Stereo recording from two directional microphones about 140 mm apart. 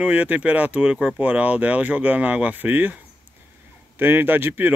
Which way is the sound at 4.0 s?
15° right (ahead or behind).